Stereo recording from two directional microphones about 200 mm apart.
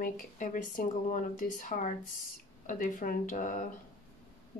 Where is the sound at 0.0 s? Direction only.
40° left (ahead or behind).